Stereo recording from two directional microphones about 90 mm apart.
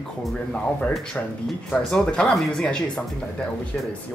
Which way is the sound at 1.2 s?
15° left (ahead or behind).